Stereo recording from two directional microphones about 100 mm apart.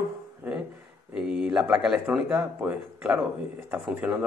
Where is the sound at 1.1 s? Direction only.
5° right (ahead or behind).